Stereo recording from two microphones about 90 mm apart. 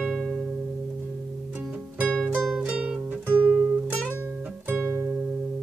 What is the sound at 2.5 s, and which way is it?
Music, 10° right (ahead or behind).